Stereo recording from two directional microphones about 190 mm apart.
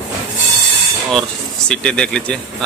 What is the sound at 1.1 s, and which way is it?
Speech, 5° left (ahead or behind).